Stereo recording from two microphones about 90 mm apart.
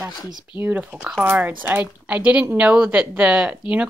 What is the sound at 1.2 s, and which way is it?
A woman's voice, 20° right (ahead or behind).